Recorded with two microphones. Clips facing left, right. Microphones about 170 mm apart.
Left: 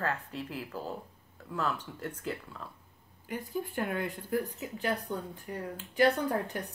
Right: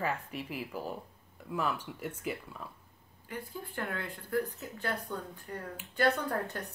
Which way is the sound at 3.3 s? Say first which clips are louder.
Left 6 dB; 20° left (ahead or behind).